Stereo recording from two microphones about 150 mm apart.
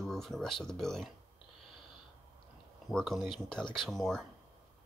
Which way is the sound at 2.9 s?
Centre (ahead or behind).